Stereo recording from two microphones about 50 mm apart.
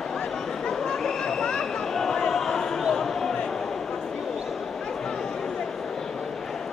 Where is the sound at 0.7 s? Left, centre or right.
Centre.